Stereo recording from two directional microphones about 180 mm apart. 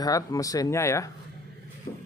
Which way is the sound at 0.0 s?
20° left (ahead or behind).